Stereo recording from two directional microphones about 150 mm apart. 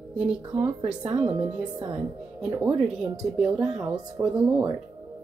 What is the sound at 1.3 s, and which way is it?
Speech, 35° right (ahead or behind).